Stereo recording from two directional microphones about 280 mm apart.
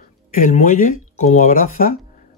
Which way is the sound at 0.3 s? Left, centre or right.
Left.